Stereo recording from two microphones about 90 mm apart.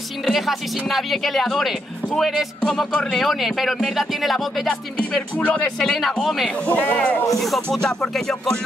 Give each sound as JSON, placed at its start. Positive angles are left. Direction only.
{"t": 0.2, "sound": "speech", "side_deg": 0}
{"t": 5.4, "sound": "speech", "side_deg": 15}
{"t": 5.8, "sound": "speech", "side_deg": 5}
{"t": 6.6, "sound": "speech", "side_deg": 15}
{"t": 7.2, "sound": "speech", "side_deg": 0}